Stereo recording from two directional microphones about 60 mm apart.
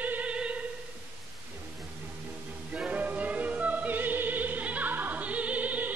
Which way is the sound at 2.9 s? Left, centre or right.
Right.